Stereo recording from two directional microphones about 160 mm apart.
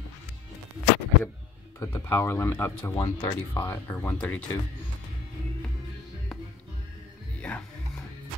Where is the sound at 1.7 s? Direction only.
15° left (ahead or behind).